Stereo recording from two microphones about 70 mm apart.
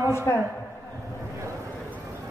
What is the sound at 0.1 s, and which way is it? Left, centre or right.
Speech, left.